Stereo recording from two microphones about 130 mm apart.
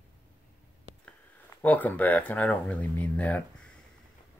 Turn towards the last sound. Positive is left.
turn(degrees=10)  # may be behind; listen again after turning